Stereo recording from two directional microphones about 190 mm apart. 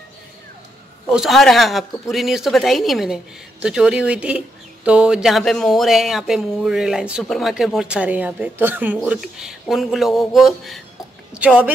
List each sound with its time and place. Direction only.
1.0 s speech: 5° right (ahead or behind)